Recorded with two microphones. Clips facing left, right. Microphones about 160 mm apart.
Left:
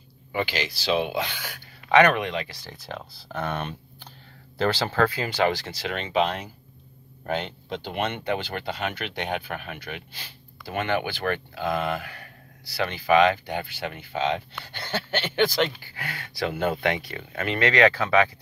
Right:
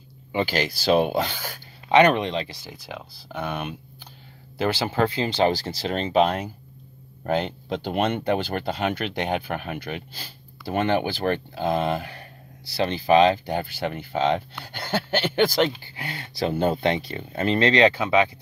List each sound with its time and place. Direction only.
0.5 s speech: 45° right (ahead or behind)
1.9 s speech: 20° right (ahead or behind)
2.6 s speech: 5° right (ahead or behind); by 15.7 s 40° right (ahead or behind)
15.7 s speech: 25° right (ahead or behind)